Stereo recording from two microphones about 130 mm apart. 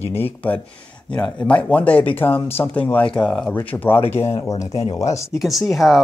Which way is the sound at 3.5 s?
20° left (ahead or behind).